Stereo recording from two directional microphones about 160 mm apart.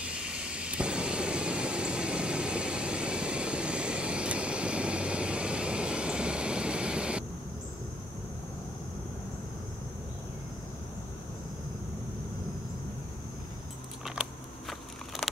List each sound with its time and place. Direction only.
0.0 s vehicle: 5° right (ahead or behind)